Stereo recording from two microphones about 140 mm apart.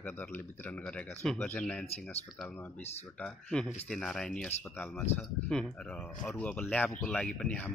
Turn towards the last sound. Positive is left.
turn(degrees=10)  # may be behind; listen again after turning